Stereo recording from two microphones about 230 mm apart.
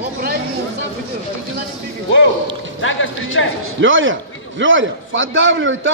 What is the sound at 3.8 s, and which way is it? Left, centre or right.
A man's voice, right.